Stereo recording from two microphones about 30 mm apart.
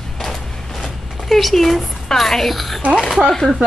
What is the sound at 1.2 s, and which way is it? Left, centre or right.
A woman's voice, centre.